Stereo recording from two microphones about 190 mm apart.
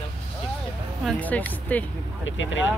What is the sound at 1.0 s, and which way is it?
Speech, 10° left (ahead or behind).